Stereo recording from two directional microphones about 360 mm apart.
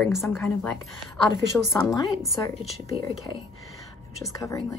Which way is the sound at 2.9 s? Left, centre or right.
Centre.